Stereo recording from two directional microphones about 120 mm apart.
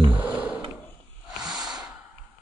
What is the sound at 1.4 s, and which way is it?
Snort, 5° right (ahead or behind).